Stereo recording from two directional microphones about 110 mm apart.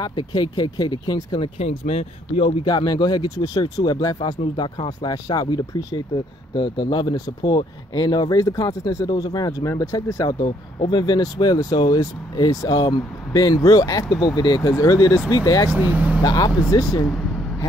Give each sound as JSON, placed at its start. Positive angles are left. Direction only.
{"t": 0.0, "sound": "speech", "side_deg": 40}
{"t": 1.6, "sound": "speech", "side_deg": 65}
{"t": 2.6, "sound": "speech", "side_deg": 40}
{"t": 6.5, "sound": "speech", "side_deg": 45}
{"t": 10.4, "sound": "speech", "side_deg": 50}
{"t": 15.8, "sound": "speech", "side_deg": -15}
{"t": 16.2, "sound": "speech", "side_deg": 35}